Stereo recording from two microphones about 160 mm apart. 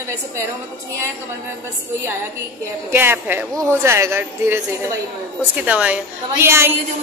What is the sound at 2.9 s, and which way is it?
A woman's voice, 15° right (ahead or behind).